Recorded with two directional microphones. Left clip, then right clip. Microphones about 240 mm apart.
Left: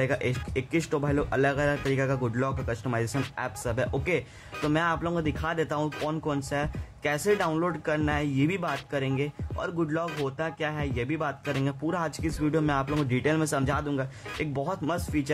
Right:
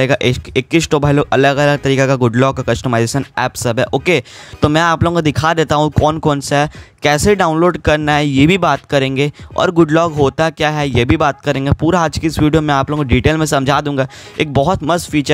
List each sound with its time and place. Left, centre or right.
0.0 s speech: right